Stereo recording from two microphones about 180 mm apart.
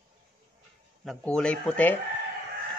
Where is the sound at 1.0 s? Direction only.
5° left (ahead or behind).